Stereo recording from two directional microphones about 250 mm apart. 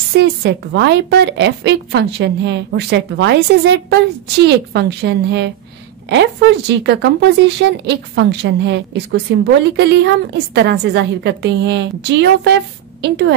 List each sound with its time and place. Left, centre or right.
0.1 s a woman's voice: right